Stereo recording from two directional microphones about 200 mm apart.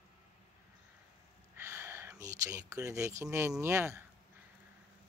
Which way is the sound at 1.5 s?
15° right (ahead or behind).